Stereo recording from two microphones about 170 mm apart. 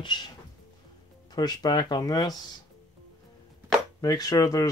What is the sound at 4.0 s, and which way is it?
Speech, 20° left (ahead or behind).